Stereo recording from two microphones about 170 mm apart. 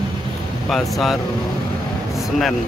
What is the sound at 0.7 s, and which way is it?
Speech, centre (ahead or behind).